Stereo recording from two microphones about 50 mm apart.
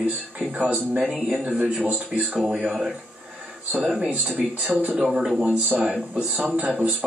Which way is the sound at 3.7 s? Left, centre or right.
Centre.